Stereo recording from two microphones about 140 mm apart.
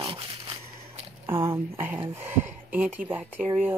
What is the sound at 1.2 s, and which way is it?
Speech, 15° right (ahead or behind).